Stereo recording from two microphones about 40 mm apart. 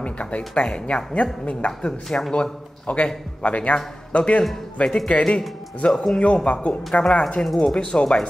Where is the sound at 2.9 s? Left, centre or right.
Left.